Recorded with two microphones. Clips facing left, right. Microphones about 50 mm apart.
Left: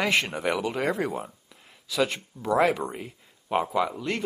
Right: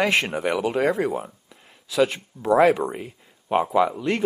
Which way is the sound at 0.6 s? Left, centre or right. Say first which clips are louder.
Right 5 dB; centre.